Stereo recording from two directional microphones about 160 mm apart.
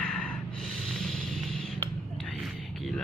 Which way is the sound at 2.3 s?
Centre (ahead or behind).